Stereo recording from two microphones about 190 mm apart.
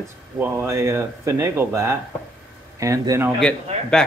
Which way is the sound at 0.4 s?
10° right (ahead or behind).